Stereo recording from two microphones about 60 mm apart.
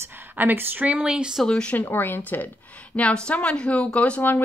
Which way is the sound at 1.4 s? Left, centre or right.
Centre.